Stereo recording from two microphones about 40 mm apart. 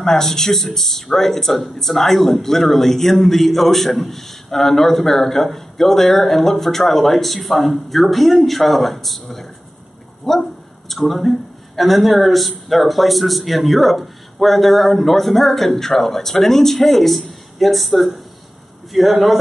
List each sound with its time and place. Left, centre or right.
0.0 s a man's voice: centre